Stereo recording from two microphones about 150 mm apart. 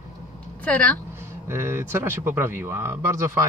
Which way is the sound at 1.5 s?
15° right (ahead or behind).